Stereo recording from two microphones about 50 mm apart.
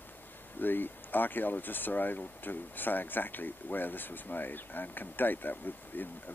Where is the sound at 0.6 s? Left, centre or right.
Left.